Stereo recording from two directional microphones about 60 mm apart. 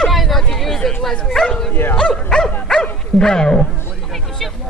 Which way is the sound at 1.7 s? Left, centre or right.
Left.